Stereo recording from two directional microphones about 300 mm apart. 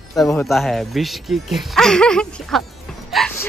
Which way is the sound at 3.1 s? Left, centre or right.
Centre.